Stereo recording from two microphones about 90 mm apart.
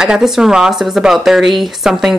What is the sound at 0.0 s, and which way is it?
Speech, 5° right (ahead or behind).